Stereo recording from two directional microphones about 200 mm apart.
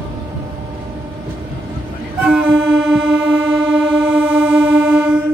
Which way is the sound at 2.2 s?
5° right (ahead or behind).